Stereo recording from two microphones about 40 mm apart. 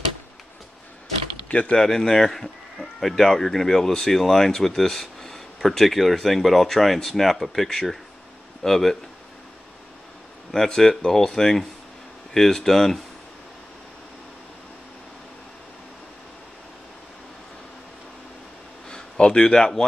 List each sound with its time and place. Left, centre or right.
1.7 s speech: centre
10.5 s speech: centre
18.9 s speech: left